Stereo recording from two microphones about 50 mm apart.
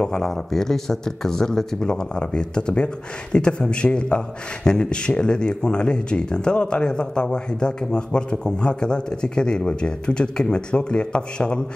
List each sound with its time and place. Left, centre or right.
0.0 s a man's voice: centre